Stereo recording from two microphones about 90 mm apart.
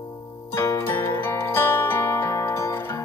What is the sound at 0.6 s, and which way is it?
Zither, 25° left (ahead or behind).